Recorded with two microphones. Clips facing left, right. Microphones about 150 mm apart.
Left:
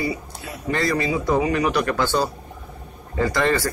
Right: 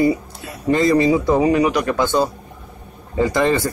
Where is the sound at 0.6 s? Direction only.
20° right (ahead or behind).